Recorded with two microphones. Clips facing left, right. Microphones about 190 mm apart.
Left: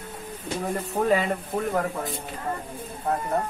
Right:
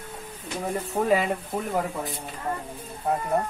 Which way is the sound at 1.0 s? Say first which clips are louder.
Even; 5° right (ahead or behind).